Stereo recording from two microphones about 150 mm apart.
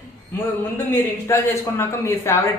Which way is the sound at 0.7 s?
15° left (ahead or behind).